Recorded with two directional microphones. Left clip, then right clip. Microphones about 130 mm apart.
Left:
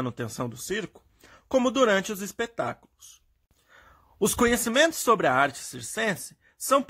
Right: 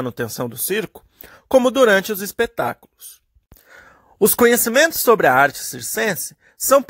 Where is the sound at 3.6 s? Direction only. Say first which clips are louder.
Right 10 dB; 50° right (ahead or behind).